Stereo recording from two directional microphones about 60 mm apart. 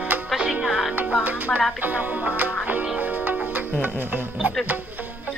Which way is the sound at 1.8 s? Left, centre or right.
Right.